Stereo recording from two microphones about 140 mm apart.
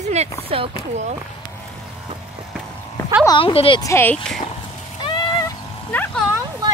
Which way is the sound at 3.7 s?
20° left (ahead or behind).